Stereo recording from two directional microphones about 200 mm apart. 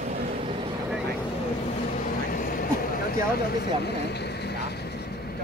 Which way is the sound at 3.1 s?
55° left (ahead or behind).